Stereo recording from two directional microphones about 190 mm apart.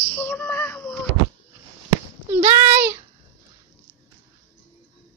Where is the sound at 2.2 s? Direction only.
15° right (ahead or behind).